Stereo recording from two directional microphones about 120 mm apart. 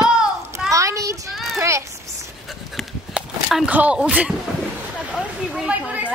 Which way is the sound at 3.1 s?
10° right (ahead or behind).